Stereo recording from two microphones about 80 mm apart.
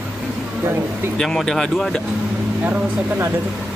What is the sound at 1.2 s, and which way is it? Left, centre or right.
Speech, centre.